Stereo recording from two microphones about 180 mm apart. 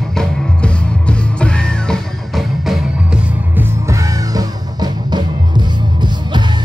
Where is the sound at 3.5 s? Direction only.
15° right (ahead or behind).